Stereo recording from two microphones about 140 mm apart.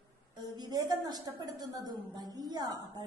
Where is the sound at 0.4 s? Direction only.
30° right (ahead or behind).